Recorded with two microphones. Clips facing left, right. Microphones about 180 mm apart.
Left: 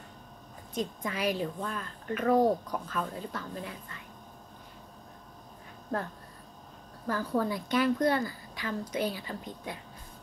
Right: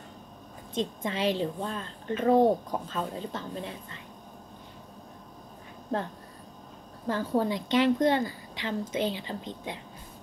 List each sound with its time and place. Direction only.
0.7 s a woman's voice: 25° right (ahead or behind)
7.1 s a woman's voice: 25° right (ahead or behind)